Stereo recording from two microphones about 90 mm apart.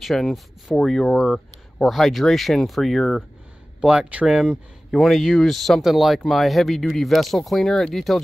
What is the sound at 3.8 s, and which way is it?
Speech, 10° right (ahead or behind).